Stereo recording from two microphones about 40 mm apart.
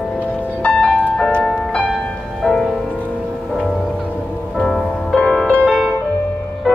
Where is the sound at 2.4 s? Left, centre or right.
Centre.